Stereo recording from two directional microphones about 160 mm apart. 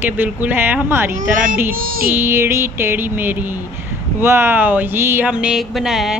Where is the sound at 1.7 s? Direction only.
65° right (ahead or behind).